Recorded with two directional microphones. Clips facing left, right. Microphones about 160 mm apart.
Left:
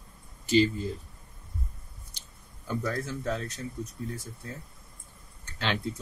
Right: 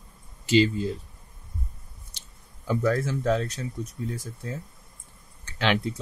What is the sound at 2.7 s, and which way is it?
Speech, 85° right.